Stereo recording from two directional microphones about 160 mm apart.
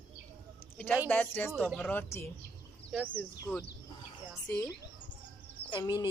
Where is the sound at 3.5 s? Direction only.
15° left (ahead or behind).